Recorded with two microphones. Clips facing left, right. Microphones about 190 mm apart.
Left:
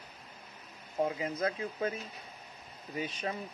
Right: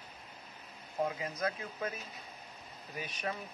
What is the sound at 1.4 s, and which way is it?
Speech, 30° left (ahead or behind).